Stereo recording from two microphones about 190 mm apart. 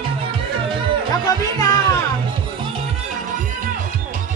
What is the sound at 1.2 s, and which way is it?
Music, 20° left (ahead or behind).